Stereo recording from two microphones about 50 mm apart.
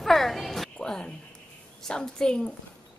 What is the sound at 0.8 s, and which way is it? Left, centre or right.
A woman's voice, centre.